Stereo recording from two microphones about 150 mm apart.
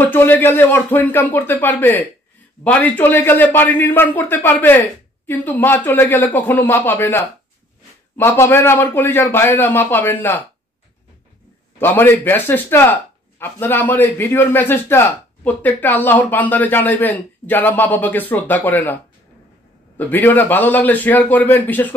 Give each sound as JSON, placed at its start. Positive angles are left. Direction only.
{"t": 0.0, "sound": "speech", "side_deg": 15}
{"t": 11.8, "sound": "speech", "side_deg": 15}
{"t": 20.0, "sound": "speech", "side_deg": 10}